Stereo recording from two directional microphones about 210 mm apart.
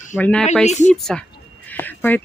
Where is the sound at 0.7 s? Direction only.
35° left (ahead or behind).